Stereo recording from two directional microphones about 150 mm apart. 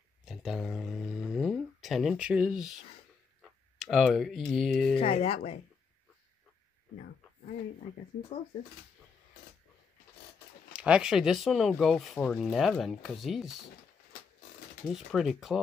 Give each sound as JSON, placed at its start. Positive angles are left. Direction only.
{"t": 0.2, "sound": "a sound", "side_deg": -5}
{"t": 3.7, "sound": "speech", "side_deg": 0}
{"t": 4.9, "sound": "speech", "side_deg": 40}
{"t": 10.7, "sound": "speech", "side_deg": -5}
{"t": 14.9, "sound": "speech", "side_deg": 0}